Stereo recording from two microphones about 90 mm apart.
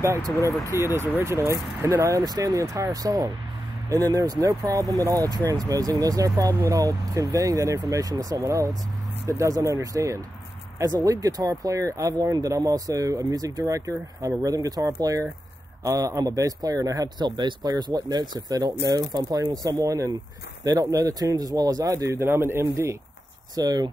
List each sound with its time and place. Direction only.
0.7 s speech: 30° right (ahead or behind)
2.2 s speech: 40° right (ahead or behind)
23.5 s speech: 45° right (ahead or behind)